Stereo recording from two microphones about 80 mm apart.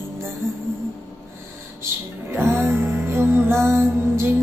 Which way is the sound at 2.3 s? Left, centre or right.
Right.